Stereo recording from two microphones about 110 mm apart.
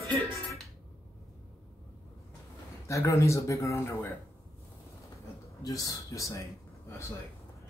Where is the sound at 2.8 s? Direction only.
30° left (ahead or behind).